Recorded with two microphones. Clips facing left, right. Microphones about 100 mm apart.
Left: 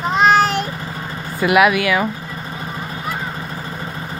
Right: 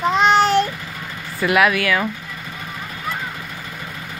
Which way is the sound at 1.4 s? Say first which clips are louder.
Left 3 dB; 15° left (ahead or behind).